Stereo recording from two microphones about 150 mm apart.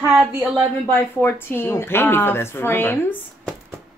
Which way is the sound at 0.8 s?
15° left (ahead or behind).